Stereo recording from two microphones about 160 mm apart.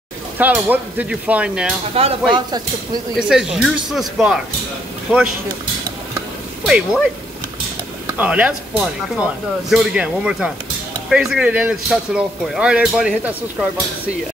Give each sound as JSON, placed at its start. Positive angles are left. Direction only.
{"t": 0.4, "sound": "speech", "side_deg": -10}
{"t": 2.0, "sound": "speech", "side_deg": -40}
{"t": 3.2, "sound": "speech", "side_deg": -5}
{"t": 5.1, "sound": "speech", "side_deg": -5}
{"t": 6.6, "sound": "speech", "side_deg": -5}
{"t": 8.1, "sound": "speech", "side_deg": -10}